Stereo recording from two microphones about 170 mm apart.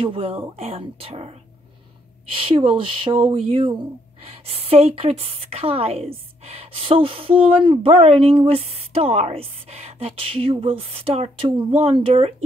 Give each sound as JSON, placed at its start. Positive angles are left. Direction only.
{"t": 0.0, "sound": "a woman's voice", "side_deg": -35}
{"t": 2.3, "sound": "a woman's voice", "side_deg": -30}